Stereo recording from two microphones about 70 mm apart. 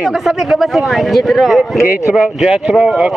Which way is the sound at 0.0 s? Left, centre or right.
Centre.